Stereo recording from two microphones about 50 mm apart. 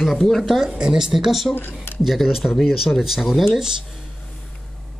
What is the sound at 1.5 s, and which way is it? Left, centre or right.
Speech, left.